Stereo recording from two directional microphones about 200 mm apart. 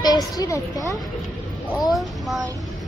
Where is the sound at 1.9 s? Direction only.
Centre (ahead or behind).